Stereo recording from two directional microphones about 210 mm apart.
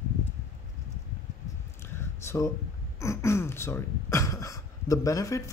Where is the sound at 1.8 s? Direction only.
10° left (ahead or behind).